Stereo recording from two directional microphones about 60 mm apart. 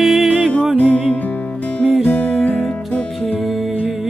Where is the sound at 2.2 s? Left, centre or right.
Left.